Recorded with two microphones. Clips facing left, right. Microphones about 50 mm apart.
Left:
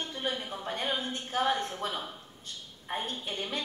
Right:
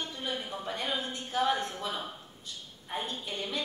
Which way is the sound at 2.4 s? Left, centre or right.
Left.